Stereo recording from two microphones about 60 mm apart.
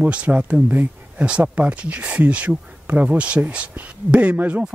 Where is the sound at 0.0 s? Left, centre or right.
Right.